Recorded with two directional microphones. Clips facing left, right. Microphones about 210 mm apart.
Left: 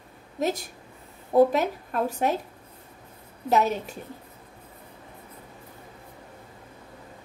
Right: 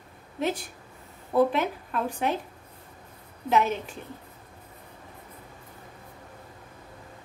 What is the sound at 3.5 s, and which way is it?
Speech, 40° left (ahead or behind).